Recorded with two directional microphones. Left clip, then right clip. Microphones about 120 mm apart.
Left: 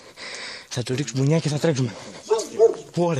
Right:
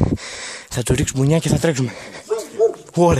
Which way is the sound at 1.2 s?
20° right (ahead or behind).